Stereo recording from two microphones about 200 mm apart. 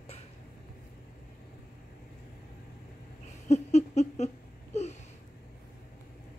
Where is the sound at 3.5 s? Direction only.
35° left (ahead or behind).